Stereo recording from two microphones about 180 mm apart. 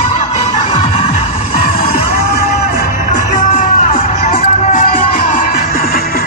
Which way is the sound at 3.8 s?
40° left (ahead or behind).